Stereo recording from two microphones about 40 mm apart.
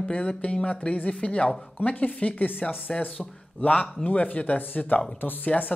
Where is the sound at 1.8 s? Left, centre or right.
Left.